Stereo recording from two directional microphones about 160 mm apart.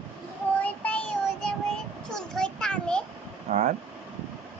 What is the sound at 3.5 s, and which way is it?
Vehicle, 40° right (ahead or behind).